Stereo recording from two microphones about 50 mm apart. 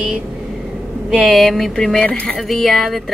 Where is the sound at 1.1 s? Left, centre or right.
Centre.